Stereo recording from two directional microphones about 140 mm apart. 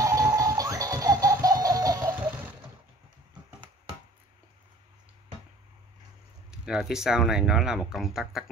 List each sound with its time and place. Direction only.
0.0 s music: 25° right (ahead or behind)
2.1 s a sound: 10° right (ahead or behind)
6.5 s speech: 5° right (ahead or behind)